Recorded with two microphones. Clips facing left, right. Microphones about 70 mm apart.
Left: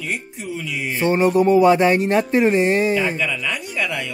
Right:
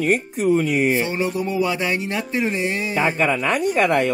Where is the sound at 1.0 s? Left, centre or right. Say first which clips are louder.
Left 6 dB; left.